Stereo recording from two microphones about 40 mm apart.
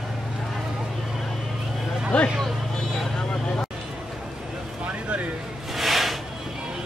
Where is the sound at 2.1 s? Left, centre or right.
Left.